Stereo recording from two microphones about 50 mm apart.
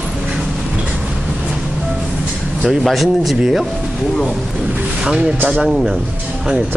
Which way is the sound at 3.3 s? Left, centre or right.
Centre.